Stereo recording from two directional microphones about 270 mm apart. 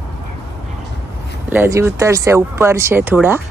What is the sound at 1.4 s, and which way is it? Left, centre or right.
Speech, centre.